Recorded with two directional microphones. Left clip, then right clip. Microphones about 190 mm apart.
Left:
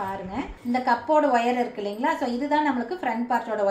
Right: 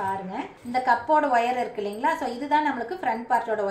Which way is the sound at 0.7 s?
10° left (ahead or behind).